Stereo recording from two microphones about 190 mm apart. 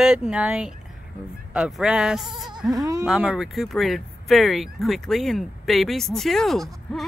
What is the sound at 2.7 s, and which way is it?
Speech, 20° right (ahead or behind).